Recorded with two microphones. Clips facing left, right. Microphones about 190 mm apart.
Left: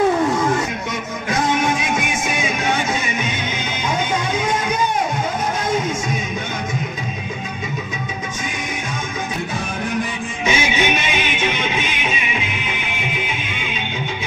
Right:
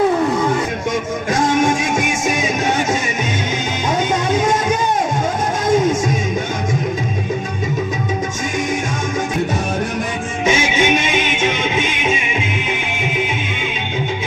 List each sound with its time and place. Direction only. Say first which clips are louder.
1.3 s music: right 3 dB; 45° right (ahead or behind)
4.3 s music: right 5 dB; 45° right (ahead or behind)
10.4 s music: right 3 dB; 45° right (ahead or behind)
11.3 s music: right 3 dB; 25° right (ahead or behind)